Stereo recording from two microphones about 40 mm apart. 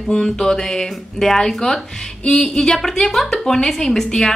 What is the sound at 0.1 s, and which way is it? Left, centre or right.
Speech, centre.